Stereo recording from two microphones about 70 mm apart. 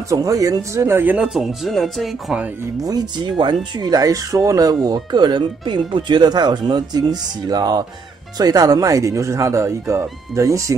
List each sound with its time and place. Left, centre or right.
0.1 s speech: right
1.3 s speech: centre
2.8 s speech: right